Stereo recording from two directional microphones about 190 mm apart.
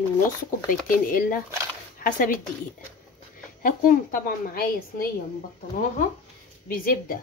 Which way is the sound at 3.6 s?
45° left (ahead or behind).